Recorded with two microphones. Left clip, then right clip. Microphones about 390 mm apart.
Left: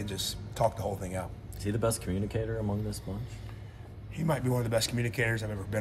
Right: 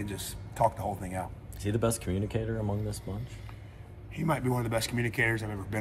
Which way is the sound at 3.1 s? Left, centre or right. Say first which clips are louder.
Right 1 dB; right.